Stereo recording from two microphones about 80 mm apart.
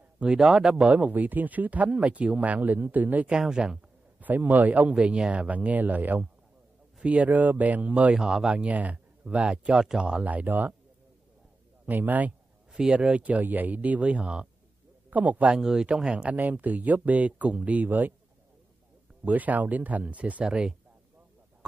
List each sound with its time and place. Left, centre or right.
0.2 s speech: centre
3.3 s speech: centre
4.2 s speech: right
11.8 s speech: right
12.7 s speech: centre
13.2 s a man's voice: right
15.5 s speech: centre
16.3 s speech: right
19.2 s speech: centre